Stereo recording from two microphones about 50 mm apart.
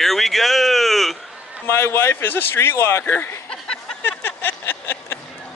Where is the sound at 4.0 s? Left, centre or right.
Left.